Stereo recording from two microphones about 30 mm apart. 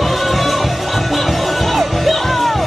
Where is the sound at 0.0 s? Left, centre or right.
Centre.